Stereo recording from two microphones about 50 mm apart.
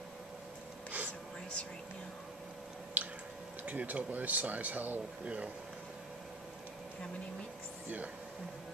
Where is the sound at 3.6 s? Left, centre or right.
Right.